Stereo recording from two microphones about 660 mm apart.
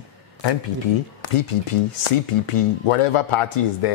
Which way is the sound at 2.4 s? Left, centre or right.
Left.